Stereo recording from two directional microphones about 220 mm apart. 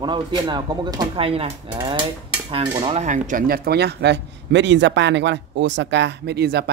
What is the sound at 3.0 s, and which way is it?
Speech, 35° right (ahead or behind).